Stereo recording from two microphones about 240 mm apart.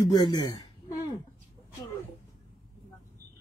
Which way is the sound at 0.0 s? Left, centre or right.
Centre.